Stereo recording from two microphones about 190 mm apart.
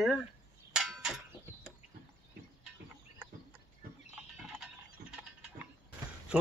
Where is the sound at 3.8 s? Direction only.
50° right (ahead or behind).